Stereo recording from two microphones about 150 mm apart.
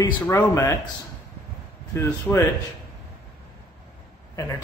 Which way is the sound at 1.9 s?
20° left (ahead or behind).